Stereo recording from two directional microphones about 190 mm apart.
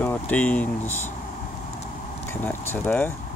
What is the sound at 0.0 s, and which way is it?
Speech, 10° left (ahead or behind).